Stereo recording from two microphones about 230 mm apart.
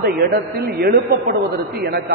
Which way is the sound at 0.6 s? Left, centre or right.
Right.